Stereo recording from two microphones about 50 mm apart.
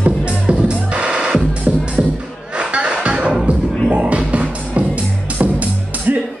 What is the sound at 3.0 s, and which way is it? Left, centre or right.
Music, right.